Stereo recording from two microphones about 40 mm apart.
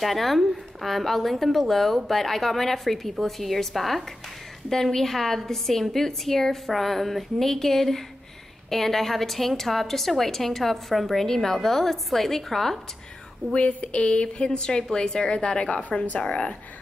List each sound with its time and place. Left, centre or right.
0.0 s a woman's voice: centre
13.5 s a woman's voice: left